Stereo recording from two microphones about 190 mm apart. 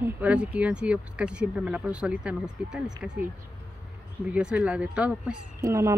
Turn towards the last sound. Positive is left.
turn(degrees=-15)  # may be behind; listen again after turning